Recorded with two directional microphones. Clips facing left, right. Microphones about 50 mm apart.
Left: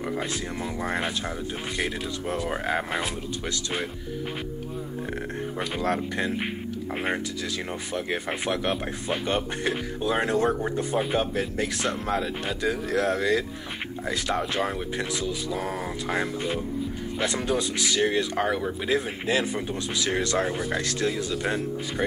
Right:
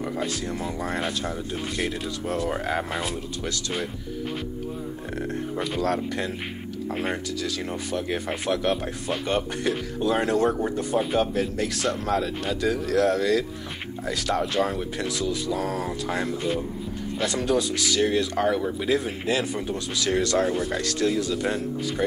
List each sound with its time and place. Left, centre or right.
0.8 s speech: centre
5.8 s speech: left
7.9 s speech: left
18.9 s speech: left
20.4 s speech: centre
20.8 s speech: left